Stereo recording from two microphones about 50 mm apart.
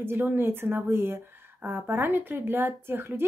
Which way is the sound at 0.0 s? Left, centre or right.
Right.